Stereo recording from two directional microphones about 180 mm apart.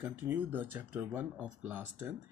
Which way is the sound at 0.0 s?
10° right (ahead or behind).